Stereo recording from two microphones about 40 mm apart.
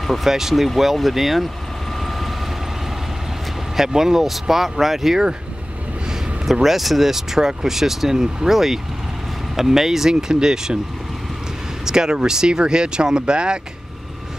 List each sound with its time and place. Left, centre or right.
0.0 s speech: centre
2.0 s vehicle: centre
3.7 s speech: centre
6.4 s speech: centre
11.8 s speech: centre